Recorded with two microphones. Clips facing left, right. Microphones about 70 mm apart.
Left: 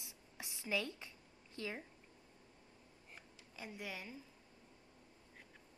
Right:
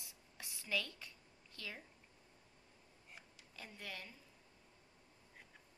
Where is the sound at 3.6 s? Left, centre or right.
Centre.